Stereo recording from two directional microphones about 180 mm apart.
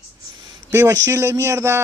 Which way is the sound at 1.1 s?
15° right (ahead or behind).